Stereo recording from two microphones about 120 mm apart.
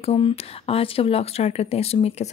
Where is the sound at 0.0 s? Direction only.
55° left (ahead or behind).